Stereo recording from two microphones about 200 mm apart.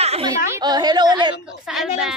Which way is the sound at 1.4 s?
Centre (ahead or behind).